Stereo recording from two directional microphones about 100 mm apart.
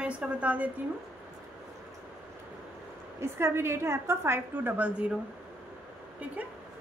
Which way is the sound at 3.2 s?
25° right (ahead or behind).